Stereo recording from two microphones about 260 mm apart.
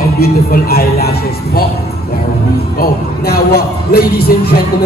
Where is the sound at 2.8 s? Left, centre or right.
Left.